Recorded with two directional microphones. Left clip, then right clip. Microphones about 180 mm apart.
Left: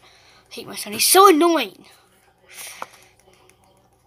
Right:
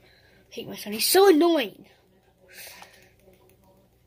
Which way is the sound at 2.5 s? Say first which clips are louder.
Left 6 dB; 10° right (ahead or behind).